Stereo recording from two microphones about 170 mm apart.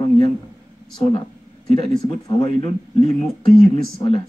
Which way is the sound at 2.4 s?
30° left (ahead or behind).